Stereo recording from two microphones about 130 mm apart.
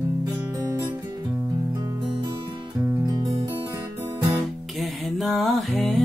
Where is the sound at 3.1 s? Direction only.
30° right (ahead or behind).